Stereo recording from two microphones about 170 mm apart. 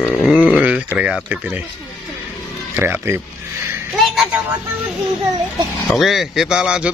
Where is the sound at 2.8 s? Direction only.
15° right (ahead or behind).